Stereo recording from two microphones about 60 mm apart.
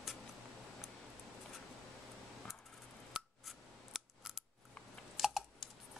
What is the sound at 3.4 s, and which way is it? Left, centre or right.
Scissors, centre.